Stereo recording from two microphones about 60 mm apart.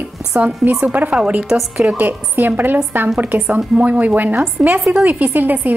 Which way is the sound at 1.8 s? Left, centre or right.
Right.